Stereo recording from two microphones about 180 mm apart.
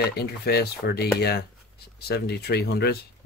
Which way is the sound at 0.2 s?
65° left (ahead or behind).